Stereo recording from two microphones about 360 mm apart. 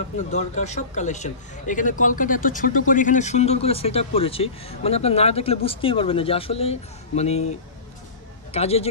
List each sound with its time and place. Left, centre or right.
0.3 s a man's voice: centre
8.5 s a man's voice: centre